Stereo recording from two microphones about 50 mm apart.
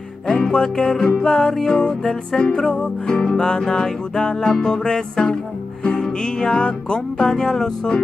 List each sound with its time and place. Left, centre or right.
0.3 s music: centre